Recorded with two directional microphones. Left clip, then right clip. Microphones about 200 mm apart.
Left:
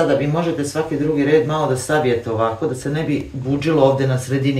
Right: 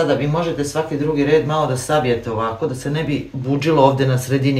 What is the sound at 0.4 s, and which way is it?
Speech, 35° right (ahead or behind).